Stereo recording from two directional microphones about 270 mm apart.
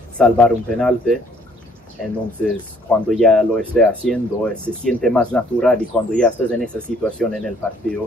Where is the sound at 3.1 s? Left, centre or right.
Centre.